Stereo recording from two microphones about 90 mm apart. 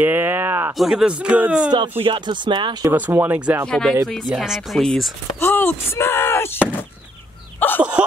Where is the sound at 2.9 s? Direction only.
20° right (ahead or behind).